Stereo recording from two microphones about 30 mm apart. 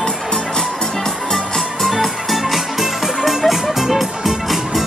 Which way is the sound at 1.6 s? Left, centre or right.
Centre.